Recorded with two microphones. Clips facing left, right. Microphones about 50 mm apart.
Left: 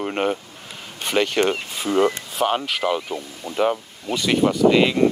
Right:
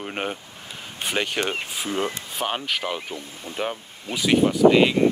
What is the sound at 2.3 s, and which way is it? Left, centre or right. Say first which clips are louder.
Speech: left 5 dB; centre.